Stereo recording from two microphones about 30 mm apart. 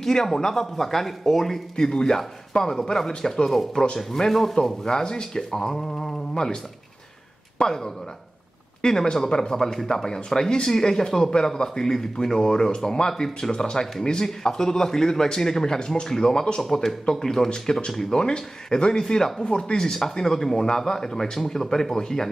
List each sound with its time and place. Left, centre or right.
0.0 s speech: centre
1.8 s speech: left
4.8 s speech: left
9.8 s speech: centre
10.0 s speech: centre
18.1 s speech: left
19.4 s speech: left
20.2 s speech: centre
20.5 s speech: left